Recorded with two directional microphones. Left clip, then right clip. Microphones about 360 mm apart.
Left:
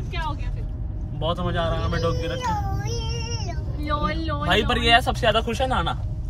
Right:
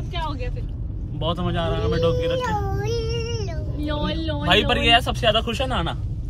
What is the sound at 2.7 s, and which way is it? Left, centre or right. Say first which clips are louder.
Music: right 6 dB; centre.